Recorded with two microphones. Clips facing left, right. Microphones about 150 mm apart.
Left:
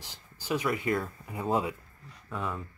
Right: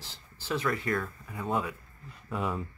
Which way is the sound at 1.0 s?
30° left (ahead or behind).